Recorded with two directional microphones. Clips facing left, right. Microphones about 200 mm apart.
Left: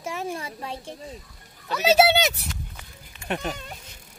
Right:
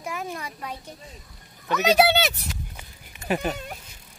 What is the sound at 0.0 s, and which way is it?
Speech, 30° left (ahead or behind).